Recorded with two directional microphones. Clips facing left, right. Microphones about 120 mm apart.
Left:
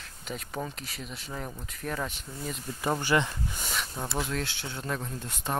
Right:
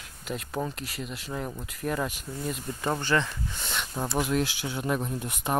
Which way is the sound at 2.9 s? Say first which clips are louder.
Left 1 dB; 15° left (ahead or behind).